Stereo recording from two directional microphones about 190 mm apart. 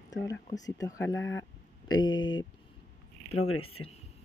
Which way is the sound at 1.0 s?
85° left.